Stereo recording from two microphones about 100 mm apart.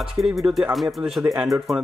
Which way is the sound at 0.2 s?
Centre (ahead or behind).